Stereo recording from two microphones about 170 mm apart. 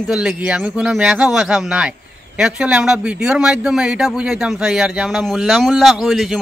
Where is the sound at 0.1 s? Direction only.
5° right (ahead or behind).